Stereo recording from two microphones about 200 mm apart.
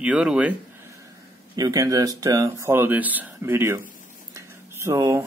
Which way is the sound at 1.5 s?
20° right (ahead or behind).